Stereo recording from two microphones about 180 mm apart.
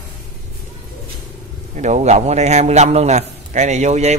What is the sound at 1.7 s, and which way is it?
A man's voice, 40° right (ahead or behind).